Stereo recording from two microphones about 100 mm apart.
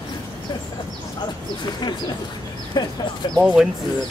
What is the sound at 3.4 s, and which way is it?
Speech, 10° right (ahead or behind).